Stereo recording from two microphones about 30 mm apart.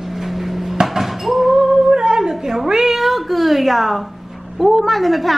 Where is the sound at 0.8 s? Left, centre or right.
Centre.